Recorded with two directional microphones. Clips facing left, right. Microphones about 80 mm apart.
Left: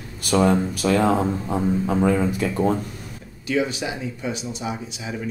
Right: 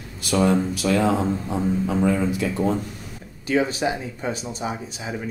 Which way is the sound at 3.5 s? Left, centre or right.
Right.